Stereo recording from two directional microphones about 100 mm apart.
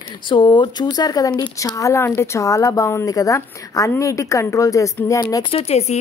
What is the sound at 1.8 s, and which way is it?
A woman's voice, 25° left (ahead or behind).